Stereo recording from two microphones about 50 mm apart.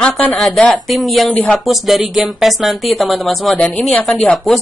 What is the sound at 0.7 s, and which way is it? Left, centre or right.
Speech, centre.